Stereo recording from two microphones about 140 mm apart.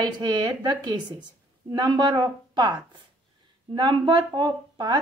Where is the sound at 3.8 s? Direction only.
35° right (ahead or behind).